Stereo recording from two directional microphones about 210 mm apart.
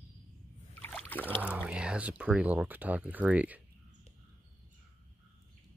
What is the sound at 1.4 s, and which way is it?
Speech, 5° right (ahead or behind).